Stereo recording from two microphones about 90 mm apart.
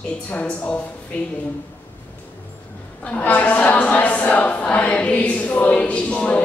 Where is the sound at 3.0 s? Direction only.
15° left (ahead or behind).